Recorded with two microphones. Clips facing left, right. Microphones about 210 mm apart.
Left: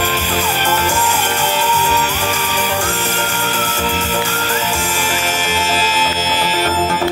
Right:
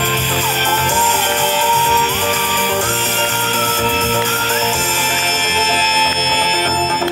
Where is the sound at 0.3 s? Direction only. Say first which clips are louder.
Left 1 dB; 10° left (ahead or behind).